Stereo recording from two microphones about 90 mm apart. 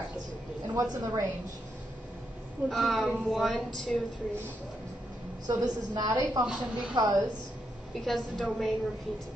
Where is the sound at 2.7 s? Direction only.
Centre (ahead or behind).